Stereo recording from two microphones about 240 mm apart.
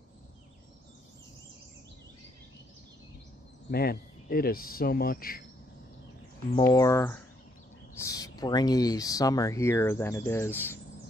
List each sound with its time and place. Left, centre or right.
3.7 s speech: left
6.6 s speech: centre